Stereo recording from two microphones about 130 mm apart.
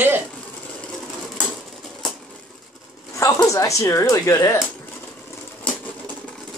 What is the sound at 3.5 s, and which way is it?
Speech, 25° left (ahead or behind).